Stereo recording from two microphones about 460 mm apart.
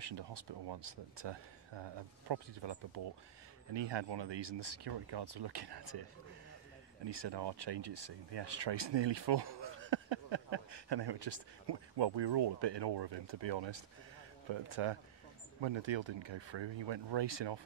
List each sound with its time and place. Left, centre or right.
0.0 s speech: right
7.1 s speech: right
14.5 s speech: right
15.6 s speech: right